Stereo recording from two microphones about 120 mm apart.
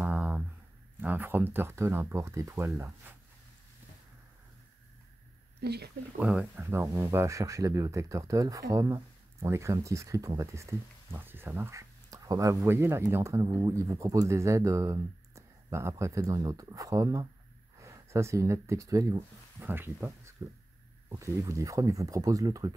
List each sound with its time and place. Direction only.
0.0 s a sound: 10° right (ahead or behind)
1.0 s speech: 15° right (ahead or behind)
6.1 s speech: 10° right (ahead or behind); by 22.8 s 30° right (ahead or behind)